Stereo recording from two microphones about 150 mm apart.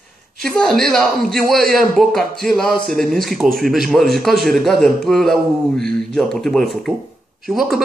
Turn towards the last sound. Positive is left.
turn(degrees=0)  # may be behind; listen again after turning